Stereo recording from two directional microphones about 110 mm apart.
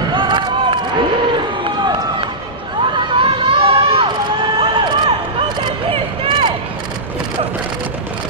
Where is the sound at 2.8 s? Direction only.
50° right (ahead or behind).